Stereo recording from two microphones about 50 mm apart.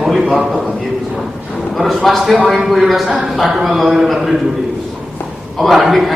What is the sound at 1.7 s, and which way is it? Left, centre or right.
A woman's voice, centre.